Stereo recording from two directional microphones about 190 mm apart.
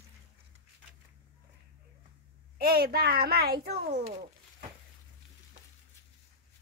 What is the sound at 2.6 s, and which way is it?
Speech, 55° right (ahead or behind).